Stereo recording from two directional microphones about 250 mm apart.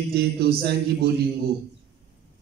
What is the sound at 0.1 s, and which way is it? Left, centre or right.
Speech, right.